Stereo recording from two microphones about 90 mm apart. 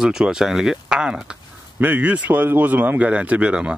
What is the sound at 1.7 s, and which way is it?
Speech, 20° right (ahead or behind).